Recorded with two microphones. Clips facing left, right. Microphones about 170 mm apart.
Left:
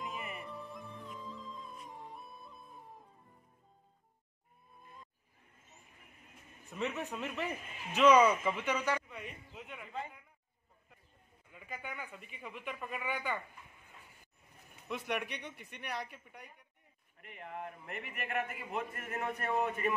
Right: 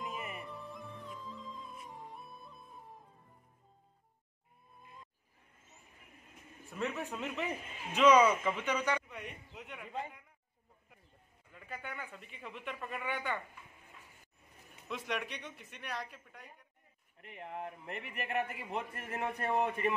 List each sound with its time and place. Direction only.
0.0 s music: centre (ahead or behind)
7.0 s a man's voice: 10° right (ahead or behind)
7.2 s a man's voice: centre (ahead or behind)
11.5 s speech: 10° left (ahead or behind)
14.9 s speech: 10° left (ahead or behind)
17.4 s a man's voice: 30° right (ahead or behind)